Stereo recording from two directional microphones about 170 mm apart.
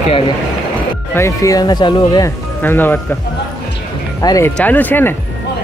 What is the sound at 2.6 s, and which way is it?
Speech, 10° left (ahead or behind).